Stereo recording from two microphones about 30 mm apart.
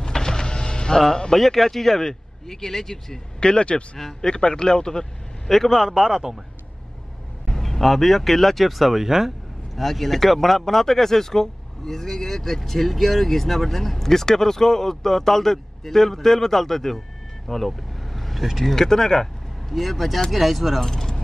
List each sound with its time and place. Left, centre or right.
0.0 s power windows: left
1.0 s speech: left
1.3 s speech: centre
3.3 s speech: left
5.5 s speech: centre
5.9 s a man's voice: centre
7.4 s speech: centre
9.0 s speech: centre
9.8 s speech: centre
17.5 s vehicle: centre
18.6 s speech: centre
19.7 s speech: centre
20.8 s speech: centre